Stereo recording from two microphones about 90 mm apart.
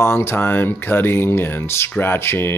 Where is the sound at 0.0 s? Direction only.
25° left (ahead or behind).